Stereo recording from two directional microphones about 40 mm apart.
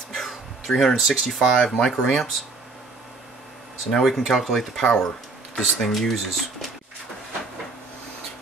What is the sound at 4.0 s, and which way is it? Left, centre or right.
Speech, centre.